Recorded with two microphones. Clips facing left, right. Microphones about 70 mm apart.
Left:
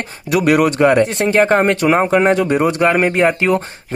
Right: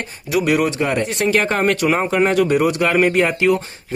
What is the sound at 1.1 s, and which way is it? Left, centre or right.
Speech, left.